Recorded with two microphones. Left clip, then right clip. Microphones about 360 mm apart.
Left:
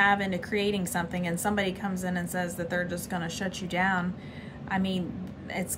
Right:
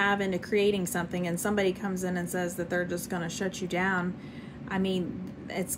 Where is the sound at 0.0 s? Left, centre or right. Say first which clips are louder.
Left 3 dB; centre.